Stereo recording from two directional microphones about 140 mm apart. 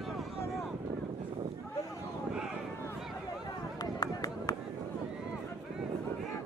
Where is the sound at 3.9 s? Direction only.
25° left (ahead or behind).